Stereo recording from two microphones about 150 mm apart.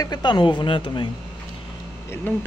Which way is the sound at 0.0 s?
30° left (ahead or behind).